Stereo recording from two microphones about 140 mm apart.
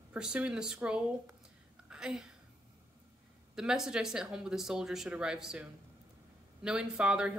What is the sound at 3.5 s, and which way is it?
Speech, 5° right (ahead or behind).